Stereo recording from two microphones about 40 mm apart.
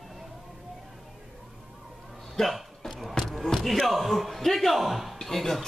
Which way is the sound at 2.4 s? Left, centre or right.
Centre.